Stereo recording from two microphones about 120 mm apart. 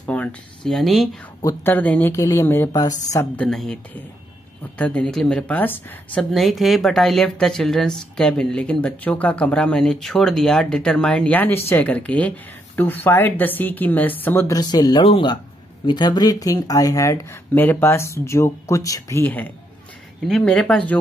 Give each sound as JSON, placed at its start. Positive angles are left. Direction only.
{"t": 0.0, "sound": "speech", "side_deg": 10}
{"t": 1.6, "sound": "speech", "side_deg": 15}
{"t": 2.1, "sound": "speech", "side_deg": 25}
{"t": 2.7, "sound": "speech", "side_deg": 35}
{"t": 3.3, "sound": "a woman's voice", "side_deg": 5}
{"t": 6.3, "sound": "speech", "side_deg": 0}
{"t": 14.5, "sound": "speech", "side_deg": 35}
{"t": 15.0, "sound": "a man's voice", "side_deg": 45}
{"t": 17.6, "sound": "speech", "side_deg": 15}
{"t": 19.2, "sound": "speech", "side_deg": 15}
{"t": 20.2, "sound": "speech", "side_deg": 5}